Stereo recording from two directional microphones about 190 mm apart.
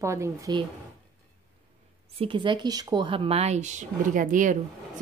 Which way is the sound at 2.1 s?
25° right (ahead or behind).